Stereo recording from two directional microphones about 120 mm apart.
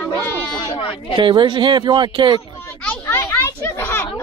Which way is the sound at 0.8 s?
50° left (ahead or behind).